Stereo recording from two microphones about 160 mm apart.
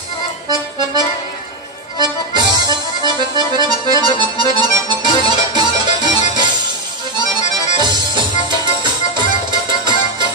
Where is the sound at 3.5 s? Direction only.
25° right (ahead or behind).